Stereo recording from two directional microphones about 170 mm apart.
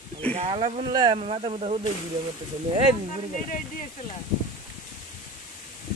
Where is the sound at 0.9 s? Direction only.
25° right (ahead or behind).